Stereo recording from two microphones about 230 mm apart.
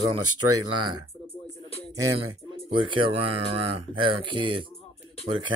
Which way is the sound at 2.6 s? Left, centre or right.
Right.